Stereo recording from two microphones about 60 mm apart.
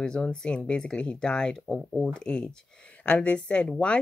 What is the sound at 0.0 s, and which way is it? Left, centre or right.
Speech, centre.